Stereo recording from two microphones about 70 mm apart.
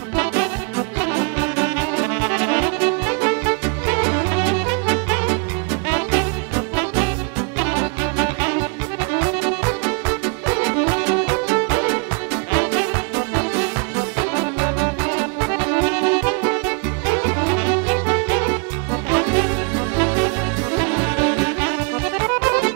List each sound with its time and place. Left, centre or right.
0.1 s music: right